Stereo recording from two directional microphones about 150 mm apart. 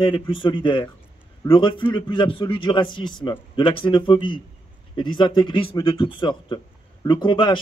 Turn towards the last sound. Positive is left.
turn(degrees=30)  # may be behind; listen again after turning